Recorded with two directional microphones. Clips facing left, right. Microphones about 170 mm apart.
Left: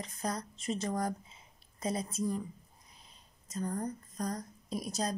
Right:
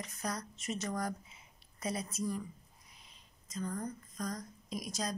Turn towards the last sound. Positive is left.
turn(degrees=35)  # may be behind; listen again after turning